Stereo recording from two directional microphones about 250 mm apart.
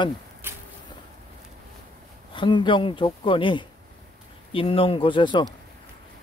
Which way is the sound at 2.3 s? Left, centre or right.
Centre.